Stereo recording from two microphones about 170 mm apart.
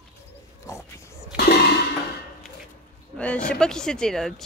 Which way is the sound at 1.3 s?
70° left (ahead or behind).